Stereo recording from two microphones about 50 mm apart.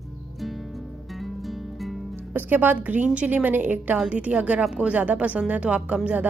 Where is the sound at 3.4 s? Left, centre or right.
Right.